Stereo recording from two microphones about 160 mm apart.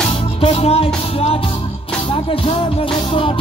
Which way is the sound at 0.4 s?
35° left (ahead or behind).